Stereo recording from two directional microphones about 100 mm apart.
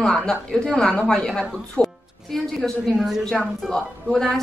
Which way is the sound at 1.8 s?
10° left (ahead or behind).